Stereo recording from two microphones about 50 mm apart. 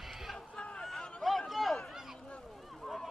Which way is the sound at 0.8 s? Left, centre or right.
Centre.